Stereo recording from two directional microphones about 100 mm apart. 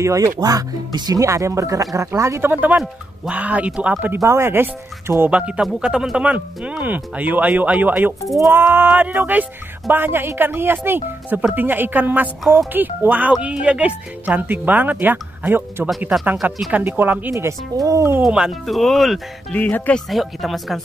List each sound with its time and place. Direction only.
0.0 s speech: 30° right (ahead or behind)
2.5 s speech: 15° right (ahead or behind)
4.2 s speech: 25° right (ahead or behind)
5.2 s speech: 10° right (ahead or behind)
17.3 s speech: 30° right (ahead or behind)
18.2 s speech: 5° right (ahead or behind)
19.5 s speech: 15° left (ahead or behind)
20.1 s speech: centre (ahead or behind)